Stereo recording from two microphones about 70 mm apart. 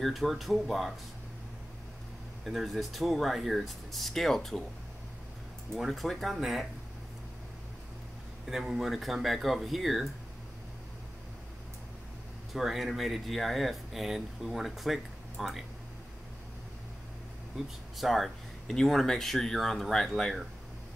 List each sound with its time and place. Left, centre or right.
0.0 s speech: centre
2.4 s speech: centre
5.8 s speech: centre
8.5 s speech: centre
12.5 s speech: centre
17.9 s speech: centre